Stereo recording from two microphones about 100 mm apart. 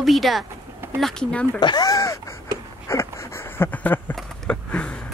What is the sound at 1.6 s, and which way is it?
Speech, 45° left (ahead or behind).